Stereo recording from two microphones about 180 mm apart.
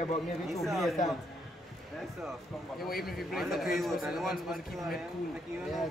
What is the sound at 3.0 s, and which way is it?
A man's voice, centre (ahead or behind).